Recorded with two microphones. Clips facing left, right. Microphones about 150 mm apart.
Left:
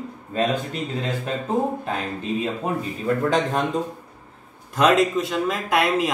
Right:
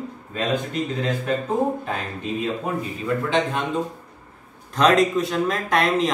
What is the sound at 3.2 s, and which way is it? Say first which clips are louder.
Speech: left 1 dB; 40° left (ahead or behind).